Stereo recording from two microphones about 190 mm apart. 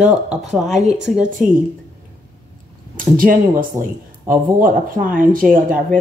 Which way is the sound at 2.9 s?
45° right (ahead or behind).